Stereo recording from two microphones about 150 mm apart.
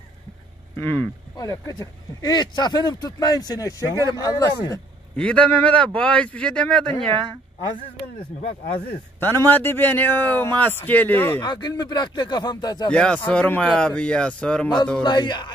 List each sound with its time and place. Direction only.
0.7 s speech: 35° right (ahead or behind)
1.3 s speech: 25° left (ahead or behind)
5.1 s speech: 5° left (ahead or behind)
8.4 s speech: 40° left (ahead or behind)
9.5 s speech: 15° left (ahead or behind)
11.4 s speech: 30° left (ahead or behind)
12.9 s speech: 10° left (ahead or behind)
15.0 s speech: 30° left (ahead or behind)